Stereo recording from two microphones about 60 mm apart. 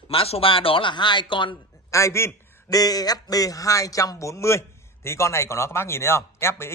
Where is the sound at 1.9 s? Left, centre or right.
Left.